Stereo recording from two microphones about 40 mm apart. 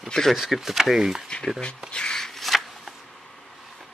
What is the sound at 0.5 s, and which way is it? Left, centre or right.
Speech, centre.